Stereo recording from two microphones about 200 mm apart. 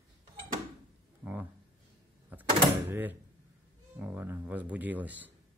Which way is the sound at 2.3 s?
10° right (ahead or behind).